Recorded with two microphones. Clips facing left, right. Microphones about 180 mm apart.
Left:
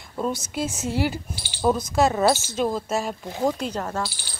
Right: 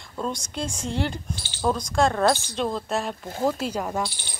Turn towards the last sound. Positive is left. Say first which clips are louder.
# right 1 dB
turn(degrees=-10)  # may be behind; listen again after turning